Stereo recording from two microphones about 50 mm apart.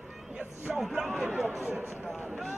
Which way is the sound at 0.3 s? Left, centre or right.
Right.